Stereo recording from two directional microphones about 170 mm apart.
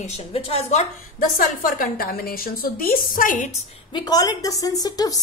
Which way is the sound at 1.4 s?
55° left (ahead or behind).